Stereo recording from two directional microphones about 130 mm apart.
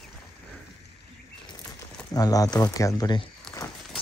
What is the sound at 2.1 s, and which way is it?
Speech, 30° left (ahead or behind).